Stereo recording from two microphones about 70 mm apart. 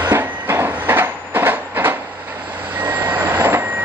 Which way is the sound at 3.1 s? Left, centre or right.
Right.